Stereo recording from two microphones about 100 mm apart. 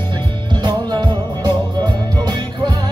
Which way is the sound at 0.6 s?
45° right (ahead or behind).